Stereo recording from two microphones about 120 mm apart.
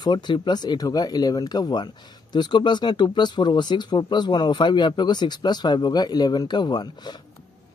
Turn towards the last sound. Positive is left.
turn(degrees=35)  # may be behind; listen again after turning